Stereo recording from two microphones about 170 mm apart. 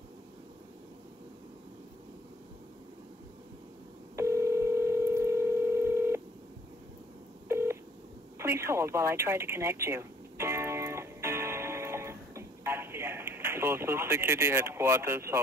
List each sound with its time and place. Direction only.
4.2 s dial tone: 15° right (ahead or behind)
7.4 s telephone dialing: 15° right (ahead or behind)
8.4 s a sound: 15° right (ahead or behind)